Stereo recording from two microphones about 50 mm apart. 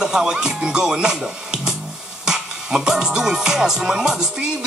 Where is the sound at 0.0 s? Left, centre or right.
Centre.